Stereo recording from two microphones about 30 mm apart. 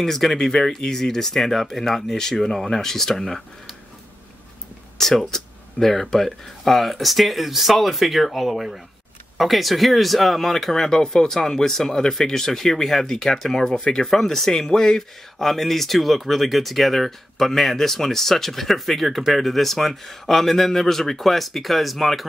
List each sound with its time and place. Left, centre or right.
0.0 s speech: centre
0.4 s speech: centre
2.0 s speech: centre
4.9 s a sound: centre
6.1 s speech: centre
10.7 s speech: centre
13.1 s speech: centre
13.4 s speech: centre